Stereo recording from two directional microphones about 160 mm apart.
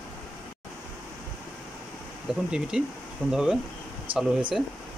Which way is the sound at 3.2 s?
10° left (ahead or behind).